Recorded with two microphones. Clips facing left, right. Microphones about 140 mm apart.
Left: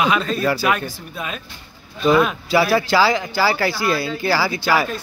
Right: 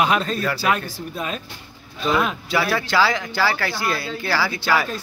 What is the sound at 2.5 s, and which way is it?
Speech, 5° left (ahead or behind).